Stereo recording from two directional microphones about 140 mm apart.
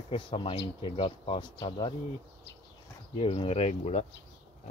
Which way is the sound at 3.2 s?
40° left (ahead or behind).